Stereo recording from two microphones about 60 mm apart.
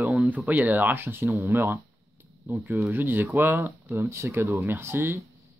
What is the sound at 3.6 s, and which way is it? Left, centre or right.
Speech, right.